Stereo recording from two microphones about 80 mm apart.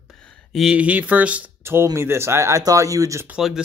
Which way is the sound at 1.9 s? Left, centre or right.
Right.